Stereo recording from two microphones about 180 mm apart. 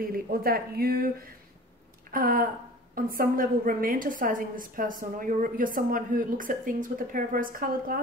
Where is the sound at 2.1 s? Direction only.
50° right (ahead or behind).